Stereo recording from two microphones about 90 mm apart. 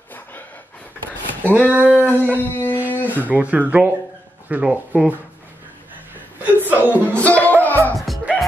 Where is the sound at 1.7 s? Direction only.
20° right (ahead or behind).